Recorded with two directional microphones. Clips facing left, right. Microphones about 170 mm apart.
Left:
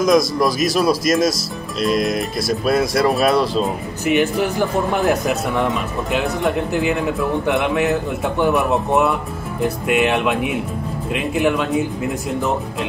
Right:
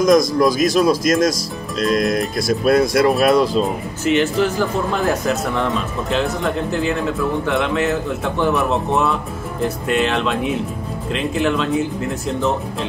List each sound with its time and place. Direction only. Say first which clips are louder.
0.0 s speech: right 2 dB; centre (ahead or behind)
4.0 s speech: right 1 dB; 15° left (ahead or behind)
9.8 s speech: left 2 dB; 15° left (ahead or behind)